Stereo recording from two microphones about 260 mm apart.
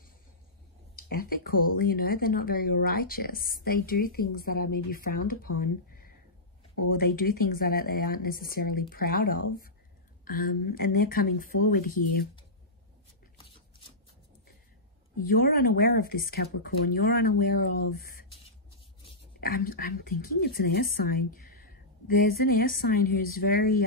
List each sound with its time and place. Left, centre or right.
0.9 s speech: left
15.2 s speech: left
19.4 s a woman's voice: left